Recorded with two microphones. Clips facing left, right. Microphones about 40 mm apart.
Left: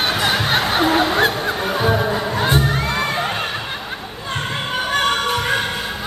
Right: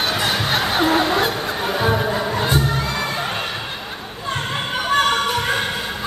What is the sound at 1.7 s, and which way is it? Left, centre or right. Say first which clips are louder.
Music: left 1 dB; centre.